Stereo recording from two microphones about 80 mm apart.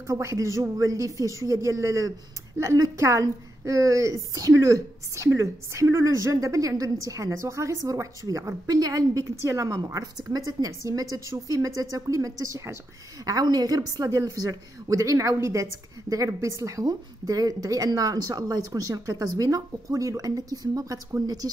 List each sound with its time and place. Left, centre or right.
0.0 s a woman's voice: right
8.6 s a woman's voice: right
13.2 s a woman's voice: right